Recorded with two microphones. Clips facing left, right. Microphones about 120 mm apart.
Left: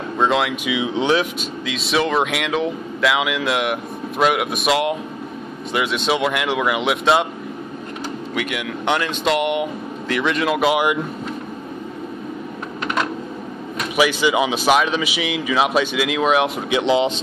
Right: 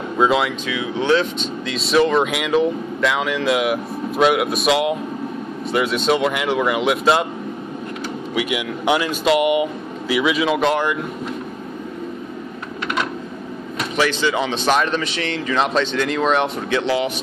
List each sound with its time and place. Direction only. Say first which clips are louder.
0.2 s speech: right 1 dB; centre (ahead or behind)
0.7 s speech: even; 20° left (ahead or behind)
1.4 s speech: right 2 dB; centre (ahead or behind)
8.4 s speech: right 3 dB; 5° right (ahead or behind)
13.9 s speech: left 2 dB; 10° left (ahead or behind)
16.8 s speech: left 6 dB; 20° left (ahead or behind)